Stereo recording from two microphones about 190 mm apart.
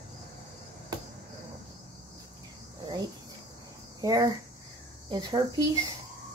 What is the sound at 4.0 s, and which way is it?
Speech, 20° right (ahead or behind).